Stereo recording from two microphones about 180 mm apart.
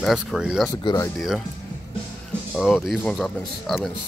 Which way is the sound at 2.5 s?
Centre (ahead or behind).